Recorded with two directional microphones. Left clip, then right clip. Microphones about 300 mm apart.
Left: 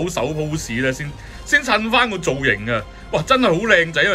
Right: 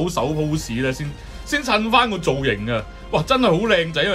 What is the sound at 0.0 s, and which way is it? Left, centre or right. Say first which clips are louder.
Speech: even; centre.